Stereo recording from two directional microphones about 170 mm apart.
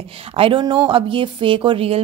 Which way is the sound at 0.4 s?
30° right (ahead or behind).